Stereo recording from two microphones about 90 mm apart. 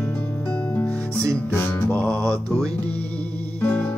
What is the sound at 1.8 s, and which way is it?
Music, 10° left (ahead or behind).